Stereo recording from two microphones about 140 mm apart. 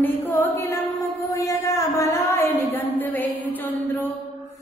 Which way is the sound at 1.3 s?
20° left (ahead or behind).